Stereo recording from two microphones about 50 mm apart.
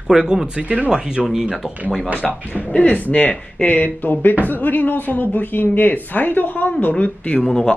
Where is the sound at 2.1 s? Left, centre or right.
Left.